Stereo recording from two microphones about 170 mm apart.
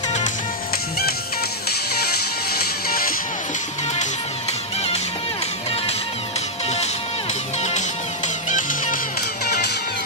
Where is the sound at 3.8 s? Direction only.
40° left (ahead or behind).